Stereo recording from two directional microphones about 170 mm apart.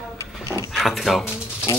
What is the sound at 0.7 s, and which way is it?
Speech, centre (ahead or behind).